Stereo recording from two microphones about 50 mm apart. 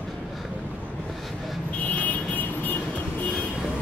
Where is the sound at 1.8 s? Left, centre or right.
Left.